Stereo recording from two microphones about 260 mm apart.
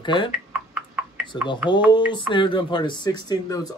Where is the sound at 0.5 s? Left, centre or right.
Centre.